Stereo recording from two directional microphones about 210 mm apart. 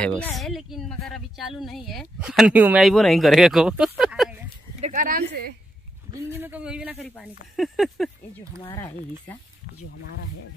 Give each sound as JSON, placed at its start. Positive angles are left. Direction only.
{"t": 0.0, "sound": "speech", "side_deg": 5}
{"t": 4.8, "sound": "a sound", "side_deg": -40}
{"t": 6.3, "sound": "speech", "side_deg": -10}
{"t": 8.5, "sound": "speech", "side_deg": 25}